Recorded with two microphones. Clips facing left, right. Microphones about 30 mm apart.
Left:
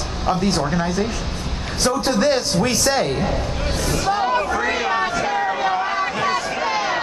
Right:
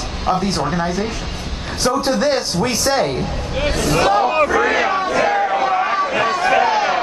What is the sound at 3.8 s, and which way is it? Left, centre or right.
Speech, right.